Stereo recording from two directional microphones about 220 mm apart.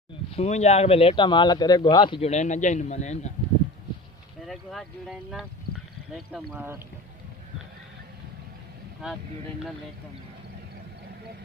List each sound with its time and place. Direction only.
0.3 s speech: 30° left (ahead or behind)
4.5 s speech: centre (ahead or behind)
6.5 s speech: 10° right (ahead or behind)